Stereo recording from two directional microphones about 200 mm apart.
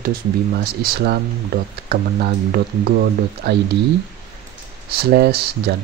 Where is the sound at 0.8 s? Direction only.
50° right (ahead or behind).